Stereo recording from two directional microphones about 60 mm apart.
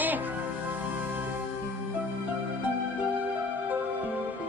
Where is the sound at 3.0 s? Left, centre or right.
Right.